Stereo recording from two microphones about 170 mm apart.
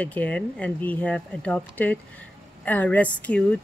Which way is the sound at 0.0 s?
10° left (ahead or behind).